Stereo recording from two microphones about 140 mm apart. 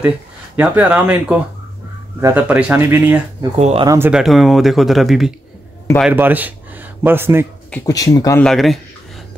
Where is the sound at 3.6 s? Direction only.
50° right (ahead or behind).